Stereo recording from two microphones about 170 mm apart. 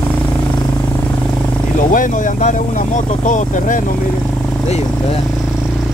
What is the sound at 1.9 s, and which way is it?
Speech, 50° left (ahead or behind).